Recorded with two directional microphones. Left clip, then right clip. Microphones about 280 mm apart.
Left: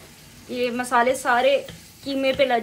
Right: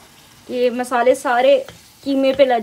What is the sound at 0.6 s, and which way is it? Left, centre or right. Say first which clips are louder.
Speech: right 3 dB; right.